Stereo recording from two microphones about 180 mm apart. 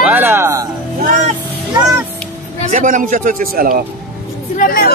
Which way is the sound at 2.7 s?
45° right (ahead or behind).